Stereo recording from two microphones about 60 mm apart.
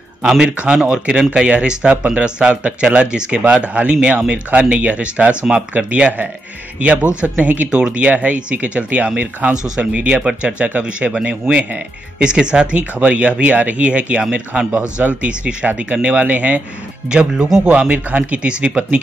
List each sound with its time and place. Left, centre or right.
0.2 s speech: centre
17.1 s speech: centre